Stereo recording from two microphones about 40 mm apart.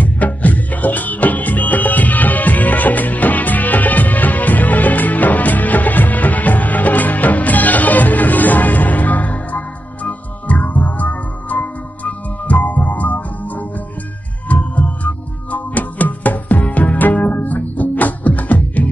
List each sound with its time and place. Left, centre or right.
0.0 s music: left
14.5 s music: left